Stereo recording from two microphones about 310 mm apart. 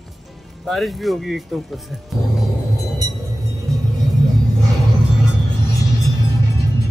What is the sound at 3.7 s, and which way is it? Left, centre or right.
Music, centre.